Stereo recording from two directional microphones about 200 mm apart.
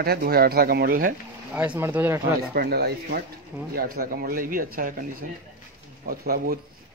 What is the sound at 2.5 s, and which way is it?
Speech, 50° right (ahead or behind).